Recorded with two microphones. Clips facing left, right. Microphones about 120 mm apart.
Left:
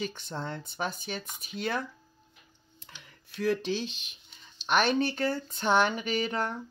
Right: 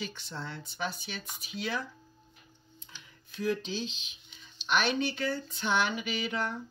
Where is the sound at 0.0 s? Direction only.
50° left (ahead or behind).